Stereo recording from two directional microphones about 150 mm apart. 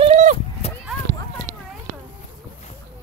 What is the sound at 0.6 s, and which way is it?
Clip-clop, 45° left (ahead or behind).